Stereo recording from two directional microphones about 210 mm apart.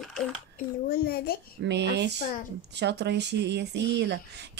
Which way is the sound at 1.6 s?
55° right (ahead or behind).